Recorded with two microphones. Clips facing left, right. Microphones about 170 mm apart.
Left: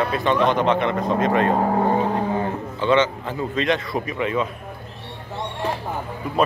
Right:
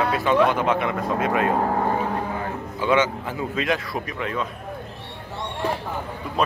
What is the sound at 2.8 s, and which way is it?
Speech, 10° right (ahead or behind).